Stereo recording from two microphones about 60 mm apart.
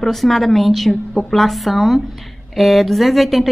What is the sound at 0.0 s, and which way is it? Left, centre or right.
A woman's voice, centre.